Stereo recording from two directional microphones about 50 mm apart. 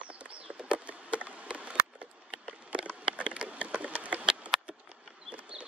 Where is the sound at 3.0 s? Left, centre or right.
Right.